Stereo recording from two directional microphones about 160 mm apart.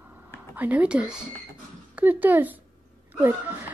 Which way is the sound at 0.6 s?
10° right (ahead or behind).